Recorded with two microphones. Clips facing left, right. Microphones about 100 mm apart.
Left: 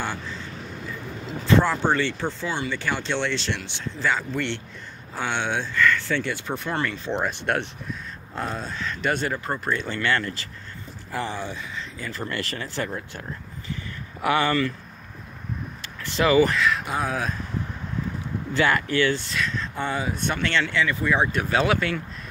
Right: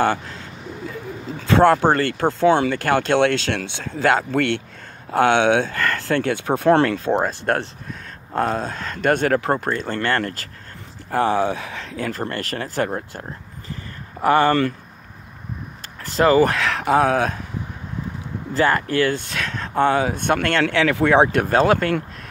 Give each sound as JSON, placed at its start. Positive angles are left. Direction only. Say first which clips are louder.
{"t": 1.5, "sound": "speech", "louder": "right 6 dB", "side_deg": -65}
{"t": 1.8, "sound": "speech", "louder": "right 5 dB", "side_deg": -50}
{"t": 2.7, "sound": "speech", "louder": "right 9 dB", "side_deg": -60}
{"t": 6.1, "sound": "speech", "louder": "right 7 dB", "side_deg": -65}
{"t": 7.1, "sound": "speech", "louder": "right 6 dB", "side_deg": -40}
{"t": 8.3, "sound": "speech", "louder": "right 9 dB", "side_deg": -55}
{"t": 9.7, "sound": "speech", "louder": "right 3 dB", "side_deg": -45}
{"t": 11.1, "sound": "speech", "louder": "right 11 dB", "side_deg": -65}
{"t": 12.2, "sound": "speech", "louder": "right 4 dB", "side_deg": -45}
{"t": 16.0, "sound": "speech", "louder": "right 4 dB", "side_deg": -40}
{"t": 16.4, "sound": "speech", "louder": "right 4 dB", "side_deg": -60}
{"t": 18.5, "sound": "speech", "louder": "right 3 dB", "side_deg": -35}